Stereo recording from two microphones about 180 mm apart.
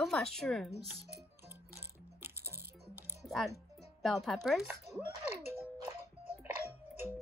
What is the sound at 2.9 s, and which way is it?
Music, 10° right (ahead or behind).